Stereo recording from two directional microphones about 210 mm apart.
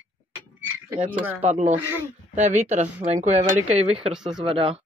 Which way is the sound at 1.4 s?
30° right (ahead or behind).